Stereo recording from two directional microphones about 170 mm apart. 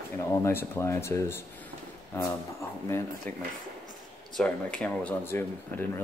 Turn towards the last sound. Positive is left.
turn(degrees=10)  # may be behind; listen again after turning